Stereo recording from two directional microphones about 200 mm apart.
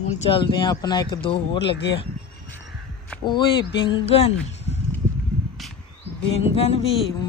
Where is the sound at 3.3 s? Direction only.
25° left (ahead or behind).